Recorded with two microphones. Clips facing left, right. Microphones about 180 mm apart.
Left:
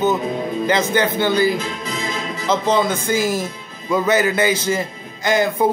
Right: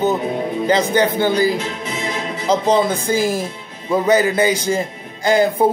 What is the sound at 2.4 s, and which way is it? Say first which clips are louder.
Speech: right 2 dB; 35° right (ahead or behind).